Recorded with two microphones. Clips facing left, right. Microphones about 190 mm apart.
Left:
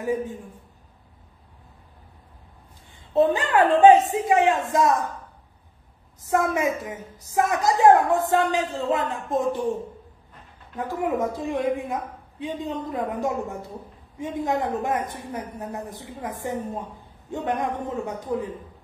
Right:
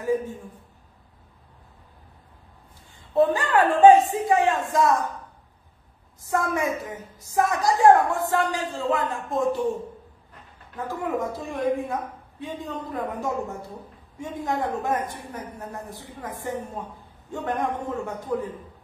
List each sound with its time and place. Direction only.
0.0 s a man's voice: 15° left (ahead or behind)
3.2 s a woman's voice: 20° left (ahead or behind)
6.2 s a woman's voice: 20° left (ahead or behind)
10.8 s a man's voice: 20° left (ahead or behind)